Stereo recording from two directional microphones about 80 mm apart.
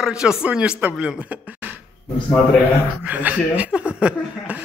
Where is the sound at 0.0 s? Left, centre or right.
Centre.